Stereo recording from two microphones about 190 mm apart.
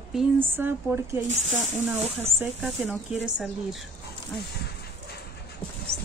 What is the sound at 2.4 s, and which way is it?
Speech, 5° right (ahead or behind).